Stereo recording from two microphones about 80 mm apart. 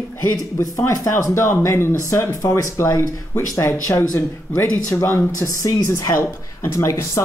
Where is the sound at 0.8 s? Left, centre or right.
Left.